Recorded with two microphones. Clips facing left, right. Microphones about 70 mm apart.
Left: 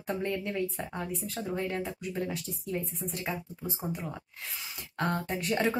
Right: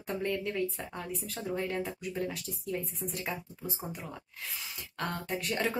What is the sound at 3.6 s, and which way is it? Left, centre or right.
Speech, centre.